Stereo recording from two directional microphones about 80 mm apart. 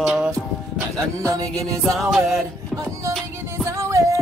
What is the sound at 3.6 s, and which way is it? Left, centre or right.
Music, right.